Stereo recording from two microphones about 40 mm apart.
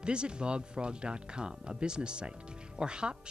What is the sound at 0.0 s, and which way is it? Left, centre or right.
Speech, right.